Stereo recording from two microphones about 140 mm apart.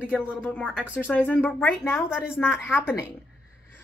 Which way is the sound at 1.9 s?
5° right (ahead or behind).